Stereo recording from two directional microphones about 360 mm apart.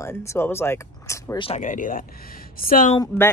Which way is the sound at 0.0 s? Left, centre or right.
Centre.